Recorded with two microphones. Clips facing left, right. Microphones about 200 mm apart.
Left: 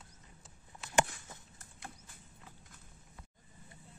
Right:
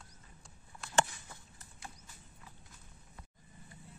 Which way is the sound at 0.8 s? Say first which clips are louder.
Left 1 dB; 20° left (ahead or behind).